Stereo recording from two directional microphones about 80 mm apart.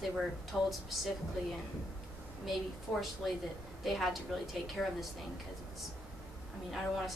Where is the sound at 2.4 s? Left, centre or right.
Centre.